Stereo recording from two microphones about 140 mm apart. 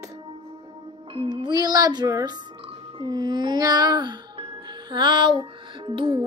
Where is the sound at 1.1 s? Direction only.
40° right (ahead or behind).